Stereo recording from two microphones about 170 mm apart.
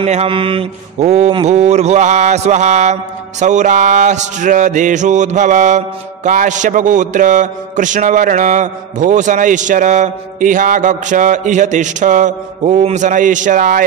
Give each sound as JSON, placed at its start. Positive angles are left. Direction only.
{"t": 0.0, "sound": "mantra", "side_deg": -35}
{"t": 1.3, "sound": "a man's voice", "side_deg": -40}